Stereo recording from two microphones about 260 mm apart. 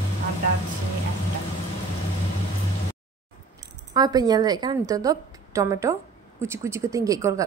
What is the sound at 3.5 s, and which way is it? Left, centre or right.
A woman's voice, centre.